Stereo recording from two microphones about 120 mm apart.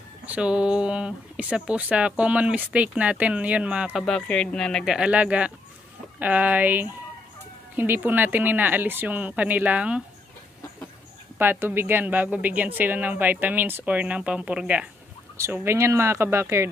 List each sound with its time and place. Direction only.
0.3 s speech: 10° right (ahead or behind)
4.0 s speech: 5° left (ahead or behind); by 10.0 s 10° right (ahead or behind)
11.3 s speech: 20° right (ahead or behind)
15.3 s speech: 20° right (ahead or behind)